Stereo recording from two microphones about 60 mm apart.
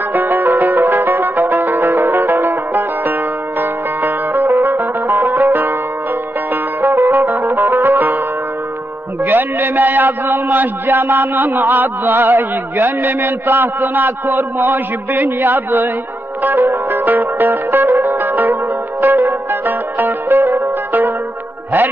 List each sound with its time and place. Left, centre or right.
0.1 s music: right
9.2 s a man's voice: right
16.4 s music: right
18.0 s zither: right